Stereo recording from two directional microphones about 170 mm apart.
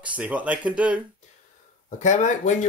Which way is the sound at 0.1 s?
10° right (ahead or behind).